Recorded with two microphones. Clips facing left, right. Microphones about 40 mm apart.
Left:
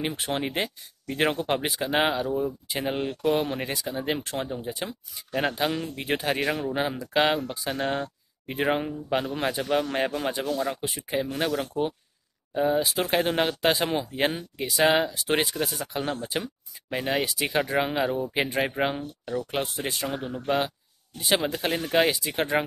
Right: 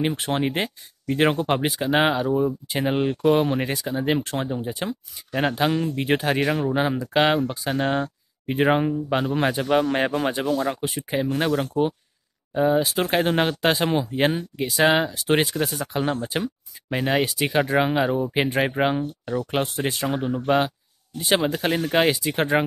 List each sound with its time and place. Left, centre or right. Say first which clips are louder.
0.1 s speech: right 5 dB; centre
15.9 s speech: right 4 dB; centre
20.2 s speech: right 6 dB; right